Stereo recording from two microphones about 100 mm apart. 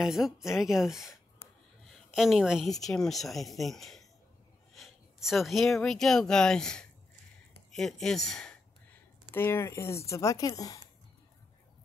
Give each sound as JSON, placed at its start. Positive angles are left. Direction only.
{"t": 0.0, "sound": "a woman's voice", "side_deg": -5}
{"t": 9.3, "sound": "speech", "side_deg": 25}